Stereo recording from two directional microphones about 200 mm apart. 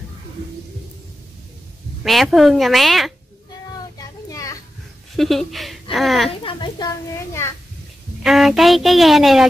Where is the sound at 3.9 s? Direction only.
15° left (ahead or behind).